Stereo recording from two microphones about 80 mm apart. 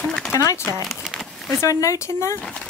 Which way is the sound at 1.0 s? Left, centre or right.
Centre.